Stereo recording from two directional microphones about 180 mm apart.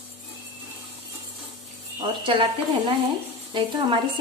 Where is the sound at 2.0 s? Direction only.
25° right (ahead or behind).